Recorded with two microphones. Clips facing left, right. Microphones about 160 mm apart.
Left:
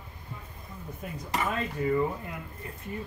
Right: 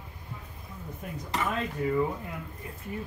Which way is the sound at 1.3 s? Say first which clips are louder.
Even; centre (ahead or behind).